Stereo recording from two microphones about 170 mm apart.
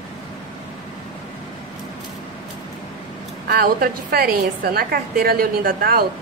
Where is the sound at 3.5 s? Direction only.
60° right (ahead or behind).